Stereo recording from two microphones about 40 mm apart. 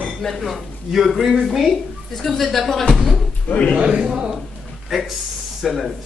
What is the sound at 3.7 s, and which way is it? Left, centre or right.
Speech, right.